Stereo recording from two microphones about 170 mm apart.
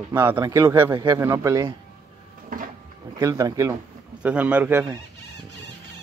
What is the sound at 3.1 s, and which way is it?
Speech, 20° right (ahead or behind).